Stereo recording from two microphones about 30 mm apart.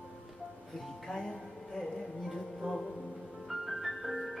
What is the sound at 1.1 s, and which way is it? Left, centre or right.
Music, left.